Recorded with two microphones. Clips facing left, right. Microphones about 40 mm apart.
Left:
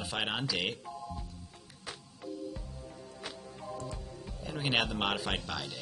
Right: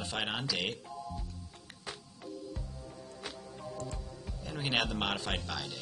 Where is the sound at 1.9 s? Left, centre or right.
Centre.